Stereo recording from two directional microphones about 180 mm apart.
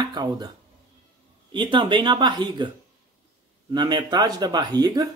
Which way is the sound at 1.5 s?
25° right (ahead or behind).